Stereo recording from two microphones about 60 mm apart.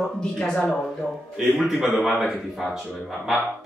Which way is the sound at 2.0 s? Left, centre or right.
Centre.